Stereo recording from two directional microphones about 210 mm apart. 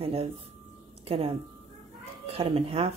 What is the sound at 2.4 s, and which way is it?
Speech, 25° right (ahead or behind).